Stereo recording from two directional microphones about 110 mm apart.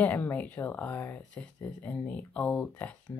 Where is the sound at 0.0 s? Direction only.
15° left (ahead or behind).